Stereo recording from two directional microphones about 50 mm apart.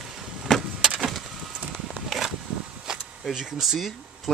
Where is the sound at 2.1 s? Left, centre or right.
Centre.